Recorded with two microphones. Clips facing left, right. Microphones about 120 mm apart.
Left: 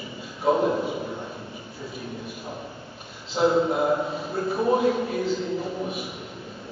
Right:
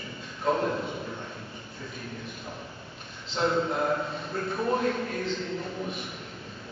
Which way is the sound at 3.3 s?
5° left (ahead or behind).